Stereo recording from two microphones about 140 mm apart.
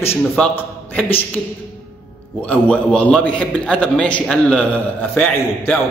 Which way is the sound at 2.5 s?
10° left (ahead or behind).